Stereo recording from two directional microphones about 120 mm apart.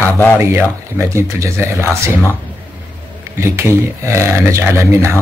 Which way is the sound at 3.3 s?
20° right (ahead or behind).